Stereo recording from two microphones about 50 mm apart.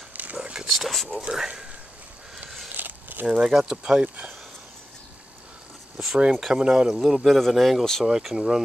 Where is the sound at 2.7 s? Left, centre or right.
Right.